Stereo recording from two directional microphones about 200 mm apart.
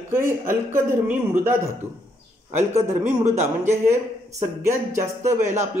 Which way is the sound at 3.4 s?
15° right (ahead or behind).